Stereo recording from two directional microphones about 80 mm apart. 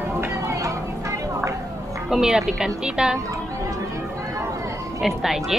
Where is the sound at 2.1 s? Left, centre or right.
Centre.